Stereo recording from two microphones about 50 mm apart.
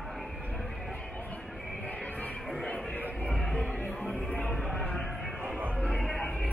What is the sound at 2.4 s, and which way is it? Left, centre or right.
Music, centre.